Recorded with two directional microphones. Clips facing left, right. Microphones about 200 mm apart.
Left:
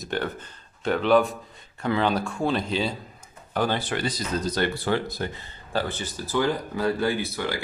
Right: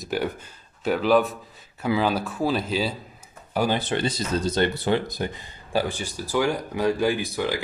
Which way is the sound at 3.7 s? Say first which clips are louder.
Right 3 dB; 25° right (ahead or behind).